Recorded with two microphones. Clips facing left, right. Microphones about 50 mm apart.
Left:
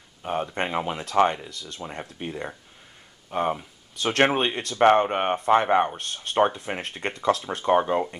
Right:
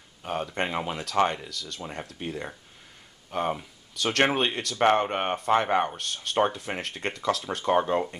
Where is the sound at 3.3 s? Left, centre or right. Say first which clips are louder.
Left 3 dB; left.